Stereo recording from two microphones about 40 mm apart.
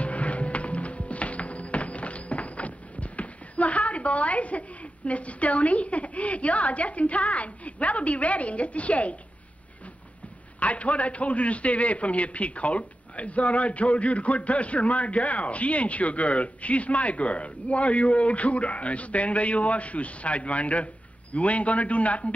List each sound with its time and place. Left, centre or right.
0.0 s music: left
10.6 s a man's voice: left